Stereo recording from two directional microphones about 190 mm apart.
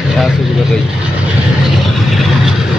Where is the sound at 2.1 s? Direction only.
Centre (ahead or behind).